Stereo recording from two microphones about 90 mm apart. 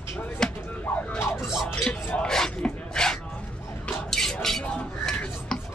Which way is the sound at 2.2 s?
5° left (ahead or behind).